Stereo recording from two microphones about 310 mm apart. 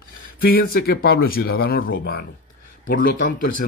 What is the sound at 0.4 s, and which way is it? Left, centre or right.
Speech, left.